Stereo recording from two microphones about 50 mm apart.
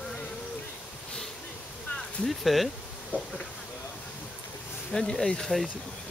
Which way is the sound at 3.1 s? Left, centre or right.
Centre.